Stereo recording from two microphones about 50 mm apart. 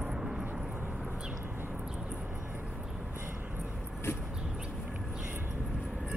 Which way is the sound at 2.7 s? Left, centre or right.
Centre.